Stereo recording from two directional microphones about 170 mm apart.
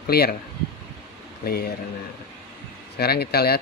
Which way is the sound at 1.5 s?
65° left (ahead or behind).